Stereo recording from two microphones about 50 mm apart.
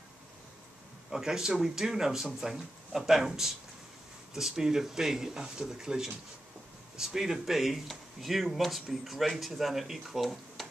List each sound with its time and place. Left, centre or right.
1.1 s speech: centre